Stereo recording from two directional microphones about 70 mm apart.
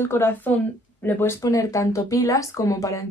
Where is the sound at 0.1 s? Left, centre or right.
Left.